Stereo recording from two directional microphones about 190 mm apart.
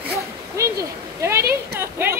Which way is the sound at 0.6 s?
15° right (ahead or behind).